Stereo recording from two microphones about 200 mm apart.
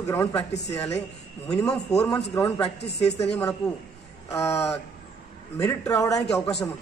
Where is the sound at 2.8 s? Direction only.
55° left (ahead or behind).